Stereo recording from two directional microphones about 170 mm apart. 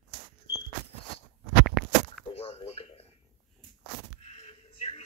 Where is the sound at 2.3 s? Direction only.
35° left (ahead or behind).